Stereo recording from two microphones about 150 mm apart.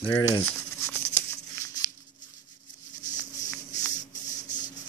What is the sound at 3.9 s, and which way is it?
Rub, 55° left (ahead or behind).